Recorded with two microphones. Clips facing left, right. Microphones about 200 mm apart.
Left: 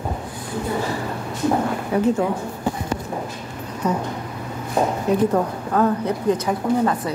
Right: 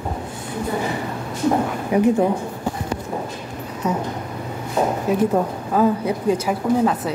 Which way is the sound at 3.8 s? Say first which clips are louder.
Even; 5° right (ahead or behind).